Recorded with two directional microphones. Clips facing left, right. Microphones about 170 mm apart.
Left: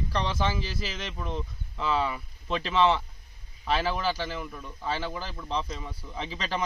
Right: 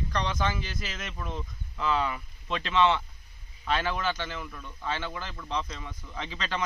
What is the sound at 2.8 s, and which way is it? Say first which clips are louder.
Speech: left 1 dB; 35° left (ahead or behind).